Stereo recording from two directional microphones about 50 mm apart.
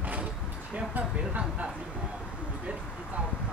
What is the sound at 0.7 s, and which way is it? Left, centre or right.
Speech, right.